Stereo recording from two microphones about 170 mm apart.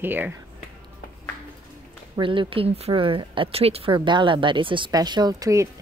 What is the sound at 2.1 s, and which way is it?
Speech, 30° right (ahead or behind).